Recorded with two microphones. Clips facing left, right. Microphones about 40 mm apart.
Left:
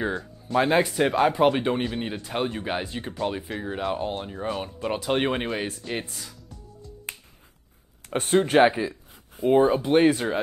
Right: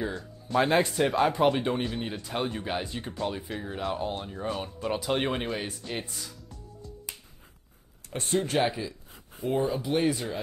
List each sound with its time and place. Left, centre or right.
0.2 s speech: centre
0.7 s speech: left
8.3 s speech: left